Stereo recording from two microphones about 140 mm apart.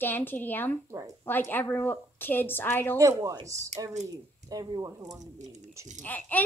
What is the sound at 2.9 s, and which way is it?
Speech, 25° right (ahead or behind).